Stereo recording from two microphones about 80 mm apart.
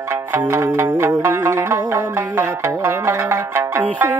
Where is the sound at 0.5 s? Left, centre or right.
Right.